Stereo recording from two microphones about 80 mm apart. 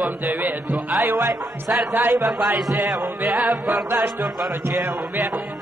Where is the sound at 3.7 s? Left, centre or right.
Right.